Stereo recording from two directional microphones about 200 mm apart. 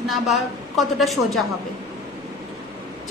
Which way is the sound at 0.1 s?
Centre (ahead or behind).